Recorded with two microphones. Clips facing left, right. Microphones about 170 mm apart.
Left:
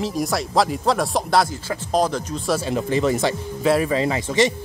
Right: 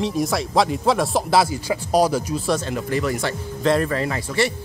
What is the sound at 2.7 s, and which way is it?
Speech, 25° left (ahead or behind).